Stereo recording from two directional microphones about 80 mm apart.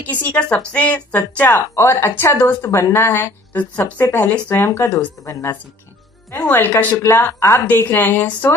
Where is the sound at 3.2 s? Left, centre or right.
Left.